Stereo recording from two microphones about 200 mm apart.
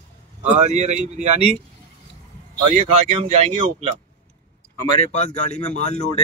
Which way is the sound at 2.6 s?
30° right (ahead or behind).